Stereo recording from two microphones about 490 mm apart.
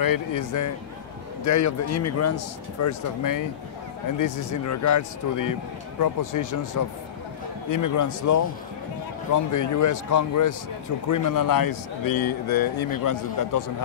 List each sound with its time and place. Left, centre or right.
0.0 s speech: left